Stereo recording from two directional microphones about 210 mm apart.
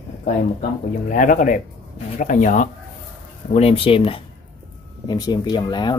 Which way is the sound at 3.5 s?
25° left (ahead or behind).